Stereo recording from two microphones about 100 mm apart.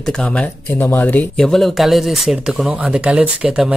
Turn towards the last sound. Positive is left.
turn(degrees=-10)  # may be behind; listen again after turning